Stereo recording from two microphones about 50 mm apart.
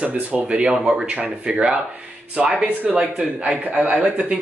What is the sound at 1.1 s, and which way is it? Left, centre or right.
Speech, right.